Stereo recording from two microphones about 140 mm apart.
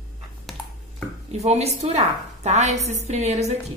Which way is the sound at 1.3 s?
50° right (ahead or behind).